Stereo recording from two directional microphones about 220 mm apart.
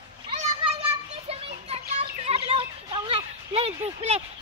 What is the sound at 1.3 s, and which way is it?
Children playing, 25° right (ahead or behind).